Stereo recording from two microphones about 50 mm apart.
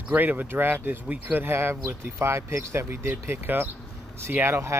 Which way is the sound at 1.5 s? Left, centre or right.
Right.